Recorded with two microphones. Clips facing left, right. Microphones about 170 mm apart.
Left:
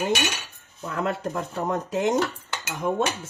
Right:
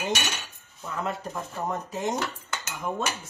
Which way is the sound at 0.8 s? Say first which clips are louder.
Left 4 dB; 70° left (ahead or behind).